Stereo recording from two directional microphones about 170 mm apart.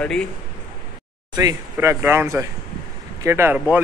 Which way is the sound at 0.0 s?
5° left (ahead or behind).